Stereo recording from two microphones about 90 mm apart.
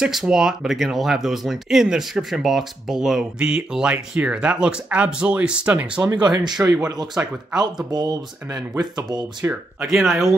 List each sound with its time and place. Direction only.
0.0 s speech: 5° right (ahead or behind)
6.1 s speech: 55° right (ahead or behind)
7.2 s speech: 35° right (ahead or behind)
7.9 s speech: 50° right (ahead or behind)
9.8 s speech: centre (ahead or behind)